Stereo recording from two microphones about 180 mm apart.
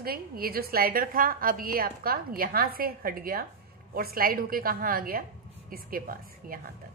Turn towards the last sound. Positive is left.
turn(degrees=-55)  # may be behind; listen again after turning